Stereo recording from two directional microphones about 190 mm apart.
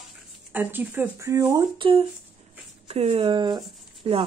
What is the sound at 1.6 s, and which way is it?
Speech, 25° right (ahead or behind).